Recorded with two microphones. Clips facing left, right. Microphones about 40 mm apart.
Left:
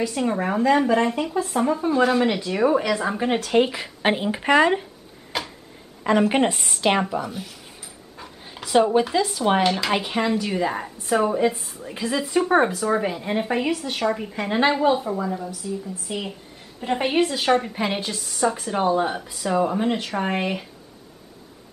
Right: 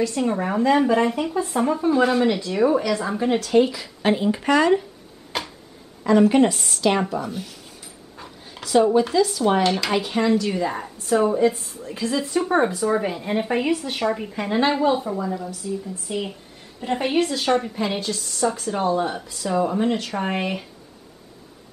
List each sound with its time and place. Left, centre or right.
0.0 s speech: centre
2.2 s speech: centre
3.3 s speech: left
5.3 s a sound: centre
6.1 s speech: left
7.0 s speech: centre
8.2 s dog: centre
8.6 s a sound: centre
9.1 s speech: left
9.7 s speech: centre
11.9 s speech: centre
12.7 s speech: centre